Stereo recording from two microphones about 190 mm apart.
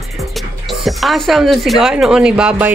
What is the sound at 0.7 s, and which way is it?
Speech, centre (ahead or behind).